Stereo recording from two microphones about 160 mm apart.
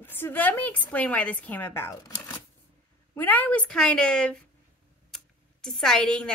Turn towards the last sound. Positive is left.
turn(degrees=5)  # may be behind; listen again after turning